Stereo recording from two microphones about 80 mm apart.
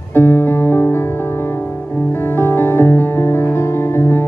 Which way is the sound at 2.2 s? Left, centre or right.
Left.